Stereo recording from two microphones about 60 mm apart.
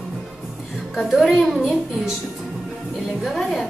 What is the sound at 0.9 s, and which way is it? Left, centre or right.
Speech, centre.